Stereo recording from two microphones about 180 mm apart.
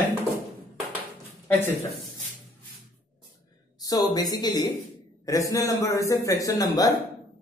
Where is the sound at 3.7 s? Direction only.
20° left (ahead or behind).